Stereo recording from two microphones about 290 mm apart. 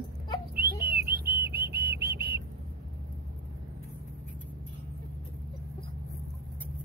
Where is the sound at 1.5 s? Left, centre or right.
Right.